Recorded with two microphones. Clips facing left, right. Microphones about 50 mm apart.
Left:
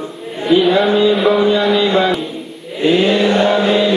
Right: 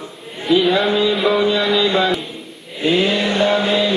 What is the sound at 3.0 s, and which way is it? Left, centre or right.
Chant, left.